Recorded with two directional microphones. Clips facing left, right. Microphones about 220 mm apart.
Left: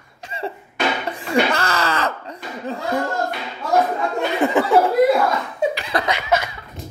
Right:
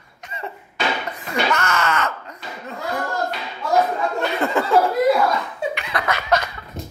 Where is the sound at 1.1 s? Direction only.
30° left (ahead or behind).